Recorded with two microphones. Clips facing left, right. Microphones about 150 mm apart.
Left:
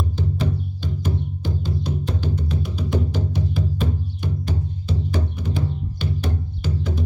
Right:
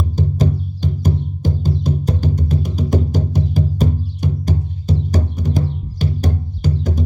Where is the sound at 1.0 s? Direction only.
45° right (ahead or behind).